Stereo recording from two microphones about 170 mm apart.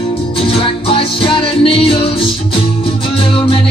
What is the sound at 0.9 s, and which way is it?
Music, 30° left (ahead or behind).